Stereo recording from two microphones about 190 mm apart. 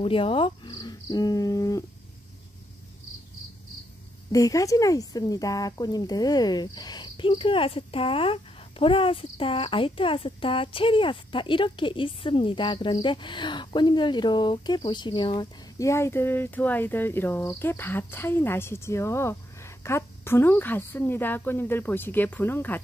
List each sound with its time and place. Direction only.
0.0 s speech: 30° left (ahead or behind)
4.3 s speech: 20° left (ahead or behind)